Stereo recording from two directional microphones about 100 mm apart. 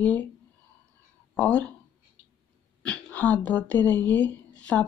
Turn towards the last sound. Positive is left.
turn(degrees=10)  # may be behind; listen again after turning